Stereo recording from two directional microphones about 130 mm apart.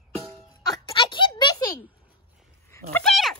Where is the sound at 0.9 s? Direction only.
40° left (ahead or behind).